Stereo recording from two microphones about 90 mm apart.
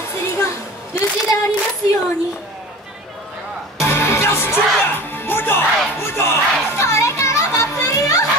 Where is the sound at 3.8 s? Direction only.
30° left (ahead or behind).